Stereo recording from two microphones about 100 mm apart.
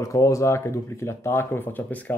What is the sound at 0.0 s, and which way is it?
Speech, 35° left (ahead or behind).